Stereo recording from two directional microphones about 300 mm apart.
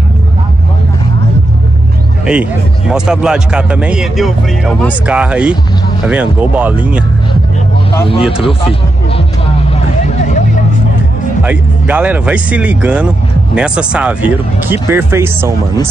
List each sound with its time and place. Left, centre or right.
2.3 s a man's voice: centre
10.0 s vehicle: left
11.4 s a man's voice: centre